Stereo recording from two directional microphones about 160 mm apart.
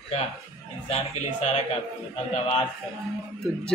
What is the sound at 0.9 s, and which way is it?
Speech, 45° left (ahead or behind).